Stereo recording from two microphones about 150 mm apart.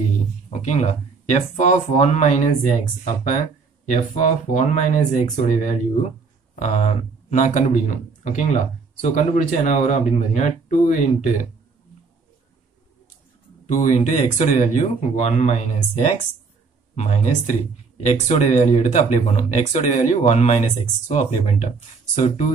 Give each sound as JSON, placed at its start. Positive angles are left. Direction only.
{"t": 0.5, "sound": "speech", "side_deg": 50}
{"t": 13.7, "sound": "speech", "side_deg": 55}
{"t": 16.9, "sound": "speech", "side_deg": 50}